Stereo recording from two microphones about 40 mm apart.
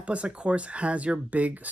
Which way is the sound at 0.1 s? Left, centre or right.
Right.